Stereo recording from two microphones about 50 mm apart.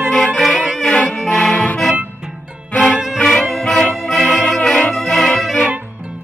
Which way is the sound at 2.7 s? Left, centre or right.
Left.